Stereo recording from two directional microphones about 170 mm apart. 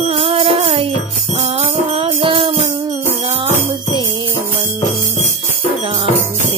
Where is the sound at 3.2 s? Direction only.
30° right (ahead or behind).